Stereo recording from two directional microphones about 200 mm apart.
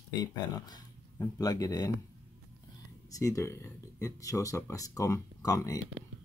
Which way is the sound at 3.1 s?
15° left (ahead or behind).